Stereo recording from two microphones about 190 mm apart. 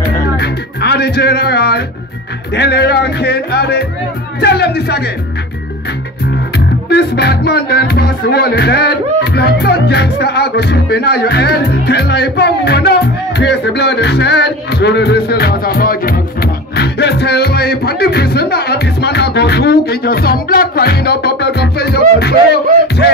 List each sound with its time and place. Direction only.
0.0 s music: 60° left (ahead or behind)
6.9 s music: 60° left (ahead or behind)